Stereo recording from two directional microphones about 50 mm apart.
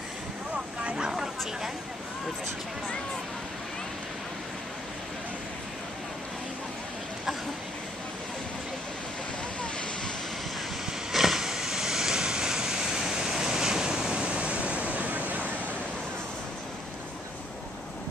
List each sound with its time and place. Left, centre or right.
0.8 s a sound: centre
9.6 s vehicle: centre
11.1 s vehicle: centre; by 15.6 s right